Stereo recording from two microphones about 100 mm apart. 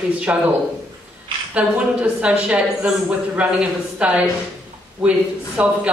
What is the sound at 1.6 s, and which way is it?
Speech, 15° right (ahead or behind).